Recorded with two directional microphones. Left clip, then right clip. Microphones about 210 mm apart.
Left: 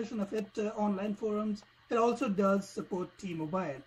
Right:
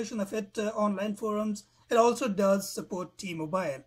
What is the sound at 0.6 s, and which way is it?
Speech, 10° right (ahead or behind).